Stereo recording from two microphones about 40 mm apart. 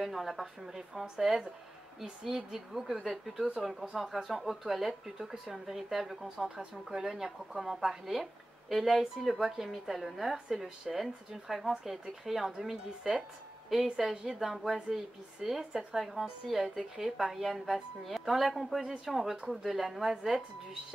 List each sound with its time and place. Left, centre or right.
0.0 s a woman's voice: centre
6.3 s a woman's voice: centre
13.7 s speech: centre
14.1 s a woman's voice: centre
14.4 s a woman's voice: centre
17.3 s a woman's voice: centre